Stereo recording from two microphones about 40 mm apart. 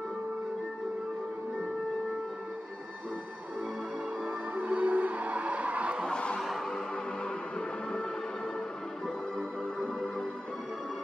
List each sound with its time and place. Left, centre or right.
4.2 s music: right
6.0 s a sound: left
7.2 s music: left
9.0 s music: centre